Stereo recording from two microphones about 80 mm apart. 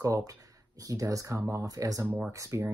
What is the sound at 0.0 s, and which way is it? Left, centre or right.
Speech, right.